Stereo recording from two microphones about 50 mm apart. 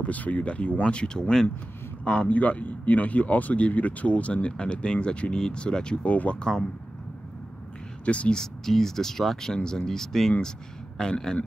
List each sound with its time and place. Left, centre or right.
0.0 s speech: left; by 1.5 s centre
2.2 s speech: left
8.0 s speech: left
8.4 s speech: centre